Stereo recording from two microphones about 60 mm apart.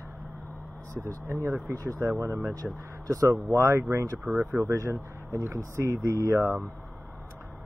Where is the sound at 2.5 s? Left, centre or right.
Right.